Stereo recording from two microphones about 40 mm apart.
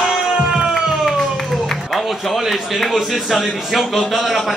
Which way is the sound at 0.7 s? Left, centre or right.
Centre.